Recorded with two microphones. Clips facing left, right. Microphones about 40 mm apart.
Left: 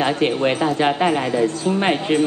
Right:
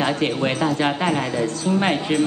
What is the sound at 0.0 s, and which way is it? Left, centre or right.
Speech, centre.